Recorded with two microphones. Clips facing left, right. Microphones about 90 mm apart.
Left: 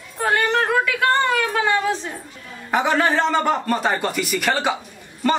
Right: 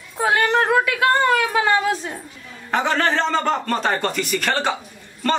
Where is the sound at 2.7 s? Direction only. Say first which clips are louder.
Left 1 dB; 10° left (ahead or behind).